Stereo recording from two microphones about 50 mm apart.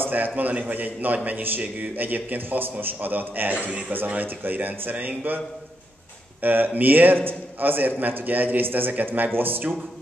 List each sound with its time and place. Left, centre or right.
0.0 s a man's voice: right
6.4 s a man's voice: right